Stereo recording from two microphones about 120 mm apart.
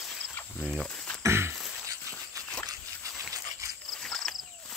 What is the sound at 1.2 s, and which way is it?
Throat clearing, 20° right (ahead or behind).